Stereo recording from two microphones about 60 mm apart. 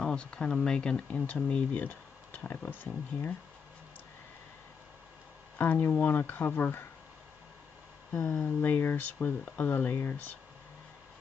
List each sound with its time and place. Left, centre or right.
0.0 s speech: centre; by 3.3 s left
5.6 s speech: left
8.2 s speech: left
8.5 s speech: left